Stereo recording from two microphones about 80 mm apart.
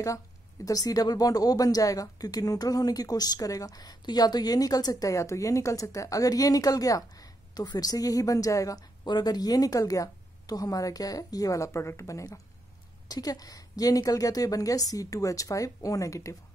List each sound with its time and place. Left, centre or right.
0.7 s speech: left
9.0 s speech: left
13.1 s speech: left